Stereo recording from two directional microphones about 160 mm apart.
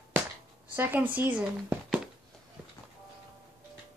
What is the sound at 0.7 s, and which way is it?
Speech, 10° right (ahead or behind).